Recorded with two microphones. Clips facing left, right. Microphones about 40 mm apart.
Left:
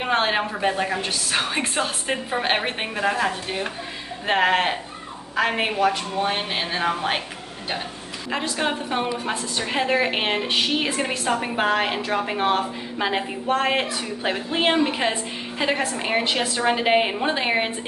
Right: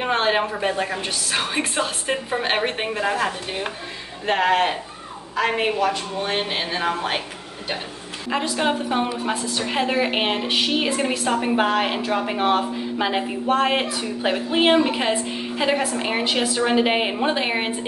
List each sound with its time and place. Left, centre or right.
0.3 s a woman's voice: centre
4.3 s a woman's voice: centre
6.5 s a woman's voice: centre
8.3 s a woman's voice: centre